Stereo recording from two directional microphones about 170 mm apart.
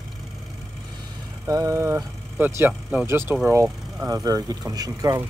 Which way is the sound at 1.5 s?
20° right (ahead or behind).